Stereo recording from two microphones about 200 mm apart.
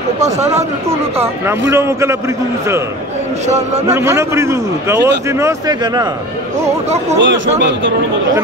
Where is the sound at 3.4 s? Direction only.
35° right (ahead or behind).